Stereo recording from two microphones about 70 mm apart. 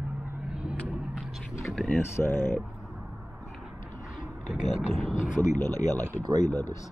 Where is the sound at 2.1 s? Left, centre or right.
Left.